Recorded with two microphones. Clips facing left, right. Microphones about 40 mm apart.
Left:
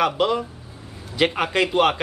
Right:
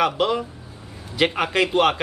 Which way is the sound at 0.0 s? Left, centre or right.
Centre.